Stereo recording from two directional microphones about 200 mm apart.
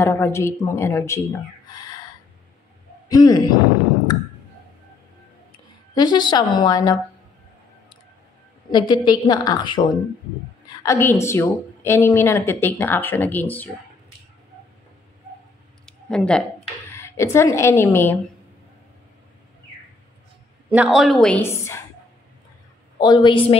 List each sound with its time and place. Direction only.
0.0 s a woman's voice: 15° left (ahead or behind)
1.7 s a sound: 20° left (ahead or behind)
3.1 s a woman's voice: 20° left (ahead or behind)
5.9 s a woman's voice: 20° left (ahead or behind)
8.7 s a woman's voice: 20° left (ahead or behind)
15.8 s a sound: 5° left (ahead or behind)
16.9 s speech: 15° left (ahead or behind)
20.7 s a woman's voice: 5° right (ahead or behind)
21.5 s a woman's voice: 15° left (ahead or behind)
22.9 s a woman's voice: 20° left (ahead or behind)